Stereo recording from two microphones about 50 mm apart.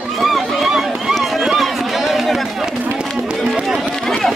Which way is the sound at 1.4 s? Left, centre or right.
Centre.